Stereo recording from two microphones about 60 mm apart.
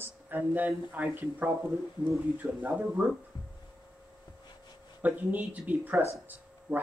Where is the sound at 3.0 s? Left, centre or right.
Right.